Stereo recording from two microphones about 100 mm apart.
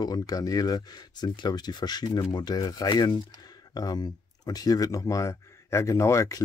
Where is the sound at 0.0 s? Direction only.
40° left (ahead or behind).